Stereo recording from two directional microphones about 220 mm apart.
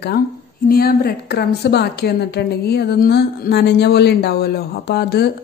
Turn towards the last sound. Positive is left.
turn(degrees=45)  # may be behind; listen again after turning